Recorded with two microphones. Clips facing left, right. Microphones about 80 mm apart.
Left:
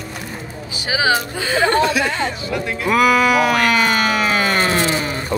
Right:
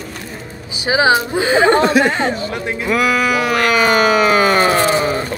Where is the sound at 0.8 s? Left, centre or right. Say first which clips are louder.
Right 5 dB; right.